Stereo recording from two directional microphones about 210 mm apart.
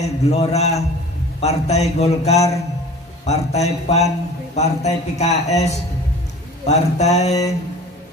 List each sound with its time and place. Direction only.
0.0 s a man's voice: 30° left (ahead or behind)